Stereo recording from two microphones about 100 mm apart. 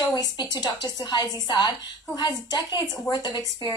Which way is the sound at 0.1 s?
40° left (ahead or behind).